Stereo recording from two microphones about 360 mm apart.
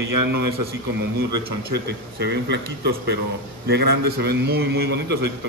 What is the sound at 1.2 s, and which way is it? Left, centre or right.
Speech, right.